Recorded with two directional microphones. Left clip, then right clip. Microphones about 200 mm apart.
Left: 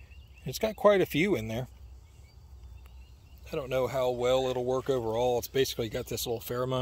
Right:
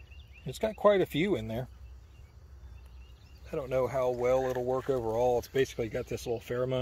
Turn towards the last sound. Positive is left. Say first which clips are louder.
# even
turn(degrees=10)  # may be behind; listen again after turning